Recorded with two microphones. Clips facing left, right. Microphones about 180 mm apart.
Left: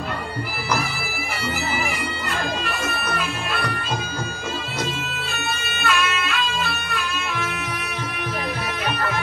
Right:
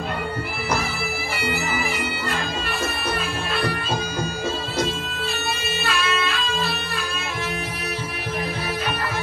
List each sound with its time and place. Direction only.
5.8 s music: 30° right (ahead or behind)